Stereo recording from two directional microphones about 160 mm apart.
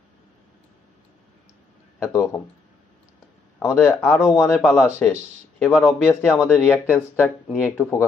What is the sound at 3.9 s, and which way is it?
Speech, 5° left (ahead or behind).